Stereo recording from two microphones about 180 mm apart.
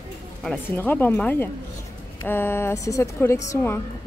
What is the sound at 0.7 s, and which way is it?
A woman's voice, 10° left (ahead or behind).